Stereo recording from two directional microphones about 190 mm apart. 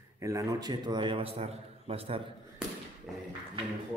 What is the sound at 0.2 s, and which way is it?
A man's voice, 15° right (ahead or behind).